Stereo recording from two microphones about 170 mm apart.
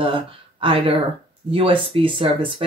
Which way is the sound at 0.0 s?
30° right (ahead or behind).